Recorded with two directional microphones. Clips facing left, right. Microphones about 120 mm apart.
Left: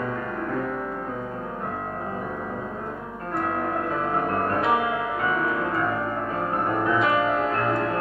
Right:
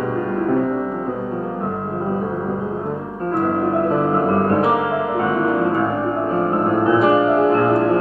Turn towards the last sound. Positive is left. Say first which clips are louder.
# right 9 dB
turn(degrees=-30)  # may be behind; listen again after turning